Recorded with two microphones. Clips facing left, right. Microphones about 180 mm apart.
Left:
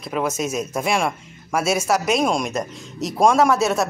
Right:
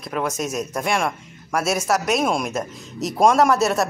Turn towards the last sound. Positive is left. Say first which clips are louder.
# even
turn(degrees=0)  # may be behind; listen again after turning